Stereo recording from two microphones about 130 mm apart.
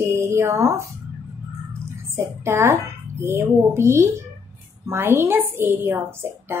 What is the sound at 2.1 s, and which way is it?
A woman's voice, 20° right (ahead or behind).